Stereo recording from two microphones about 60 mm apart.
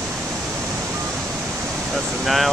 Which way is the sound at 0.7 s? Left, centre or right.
Right.